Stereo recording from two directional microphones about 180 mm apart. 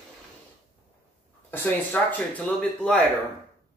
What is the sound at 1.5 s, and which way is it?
Speech, 10° left (ahead or behind).